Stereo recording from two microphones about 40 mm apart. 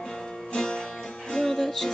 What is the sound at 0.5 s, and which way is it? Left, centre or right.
Music, centre.